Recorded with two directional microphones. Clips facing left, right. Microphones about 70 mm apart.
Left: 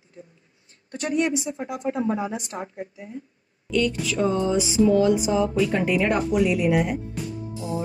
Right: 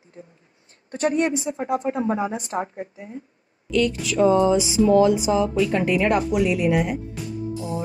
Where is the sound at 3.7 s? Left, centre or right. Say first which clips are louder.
Right 2 dB; right.